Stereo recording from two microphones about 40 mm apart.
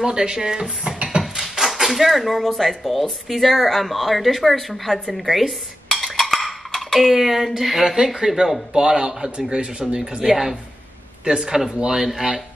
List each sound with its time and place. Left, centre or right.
0.0 s speech: centre
1.5 s speech: centre
5.1 s dishes: centre
7.8 s speech: centre
8.1 s speech: centre
8.7 s speech: centre
10.2 s speech: centre